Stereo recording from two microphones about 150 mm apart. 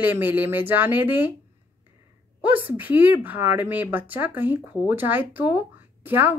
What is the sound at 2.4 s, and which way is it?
A woman's voice, 10° right (ahead or behind).